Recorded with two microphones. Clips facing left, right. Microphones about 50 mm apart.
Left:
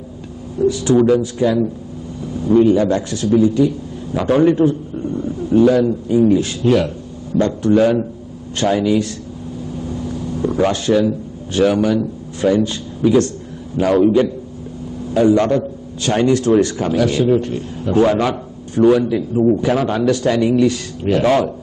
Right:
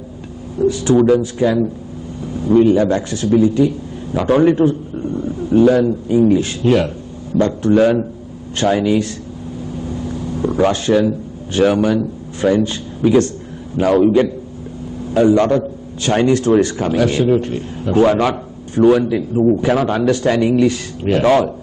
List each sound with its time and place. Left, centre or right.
0.6 s speech: right
9.8 s vehicle: right
10.5 s a man's voice: right
19.6 s speech: right